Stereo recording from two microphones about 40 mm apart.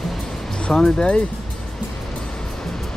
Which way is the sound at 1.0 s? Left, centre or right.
Left.